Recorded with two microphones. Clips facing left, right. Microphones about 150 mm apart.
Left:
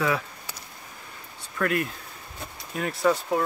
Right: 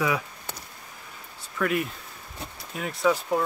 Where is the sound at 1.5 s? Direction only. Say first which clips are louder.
Even; centre (ahead or behind).